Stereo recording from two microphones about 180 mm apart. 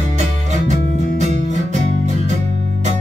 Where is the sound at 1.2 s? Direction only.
40° right (ahead or behind).